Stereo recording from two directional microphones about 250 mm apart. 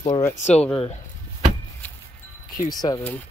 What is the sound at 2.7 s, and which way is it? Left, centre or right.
Speech, centre.